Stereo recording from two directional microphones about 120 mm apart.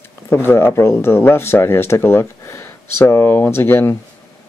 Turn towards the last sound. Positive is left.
turn(degrees=20)  # may be behind; listen again after turning